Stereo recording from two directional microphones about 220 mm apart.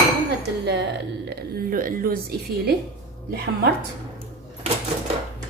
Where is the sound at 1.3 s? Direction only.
40° right (ahead or behind).